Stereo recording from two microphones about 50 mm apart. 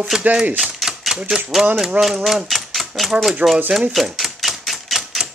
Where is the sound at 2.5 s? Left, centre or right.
Centre.